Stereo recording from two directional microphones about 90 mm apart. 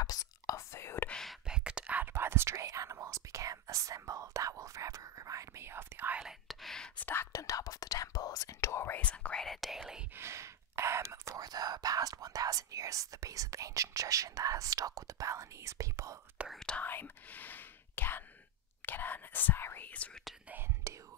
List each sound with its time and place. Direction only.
0.0 s whispering: 45° left (ahead or behind); by 1.0 s 30° left (ahead or behind)
1.2 s whispering: centre (ahead or behind)
1.6 s whispering: 10° right (ahead or behind)
6.2 s whispering: centre (ahead or behind)
7.0 s whispering: 20° left (ahead or behind)
7.3 s whispering: 40° left (ahead or behind)
9.0 s whispering: 15° left (ahead or behind); by 10.0 s 5° right (ahead or behind)
10.1 s whispering: 30° right (ahead or behind)
16.4 s whispering: 5° left (ahead or behind)
16.8 s whispering: 20° left (ahead or behind)
20.4 s whispering: 20° right (ahead or behind)